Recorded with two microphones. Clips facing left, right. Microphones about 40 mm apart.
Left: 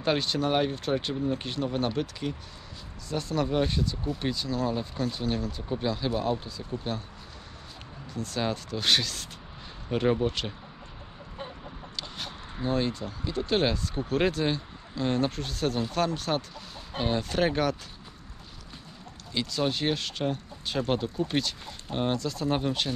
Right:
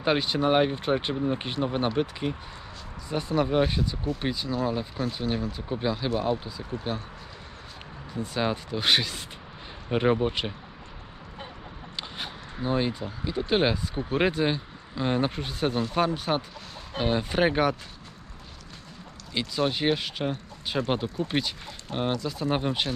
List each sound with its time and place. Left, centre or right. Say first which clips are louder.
0.0 s speech: right 2 dB; centre
8.1 s speech: right 2 dB; centre
12.5 s speech: right 1 dB; centre
19.3 s speech: right 2 dB; centre